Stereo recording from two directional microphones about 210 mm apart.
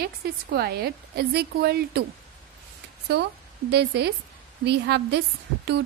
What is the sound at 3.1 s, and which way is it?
A woman's voice, 50° right (ahead or behind).